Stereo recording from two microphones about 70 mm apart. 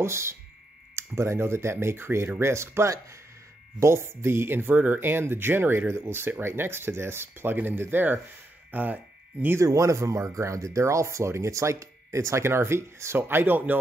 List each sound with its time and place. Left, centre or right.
0.0 s speech: right
9.6 s speech: right